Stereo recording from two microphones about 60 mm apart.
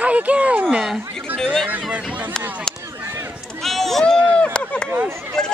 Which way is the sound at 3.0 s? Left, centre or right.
Right.